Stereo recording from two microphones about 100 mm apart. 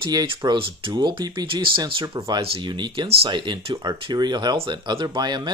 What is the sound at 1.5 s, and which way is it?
Speech, 60° right (ahead or behind).